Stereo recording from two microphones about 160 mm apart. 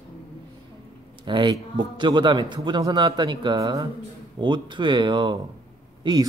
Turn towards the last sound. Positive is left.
turn(degrees=-25)  # may be behind; listen again after turning